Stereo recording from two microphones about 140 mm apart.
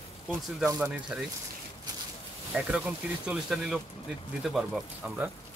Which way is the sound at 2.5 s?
5° right (ahead or behind).